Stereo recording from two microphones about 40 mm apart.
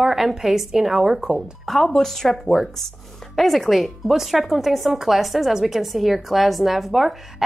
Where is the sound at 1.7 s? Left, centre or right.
Centre.